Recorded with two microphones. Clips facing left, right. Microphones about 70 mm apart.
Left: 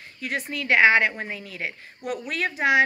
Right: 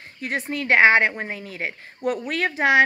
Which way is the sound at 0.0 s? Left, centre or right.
Right.